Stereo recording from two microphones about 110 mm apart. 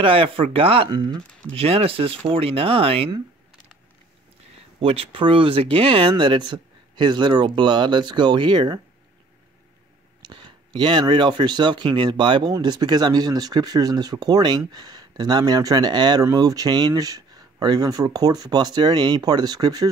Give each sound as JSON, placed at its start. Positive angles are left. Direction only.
{"t": 0.0, "sound": "speech", "side_deg": -55}
{"t": 4.7, "sound": "speech", "side_deg": -55}
{"t": 10.2, "sound": "speech", "side_deg": -45}